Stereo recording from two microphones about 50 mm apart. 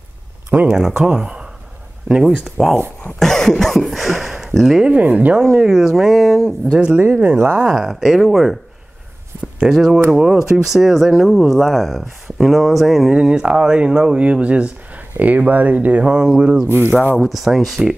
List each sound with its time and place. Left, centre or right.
0.7 s speech: centre
2.5 s speech: centre
3.2 s cough: centre
4.9 s speech: right
5.7 s speech: centre
6.7 s speech: centre
7.0 s speech: right
7.6 s speech: centre
9.6 s speech: centre
13.1 s speech: centre
16.0 s speech: centre
16.6 s speech: right
17.3 s speech: centre